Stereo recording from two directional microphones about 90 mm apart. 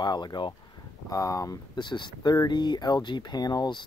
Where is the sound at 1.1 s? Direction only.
40° left (ahead or behind).